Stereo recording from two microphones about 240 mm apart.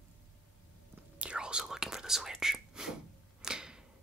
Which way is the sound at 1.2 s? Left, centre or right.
Centre.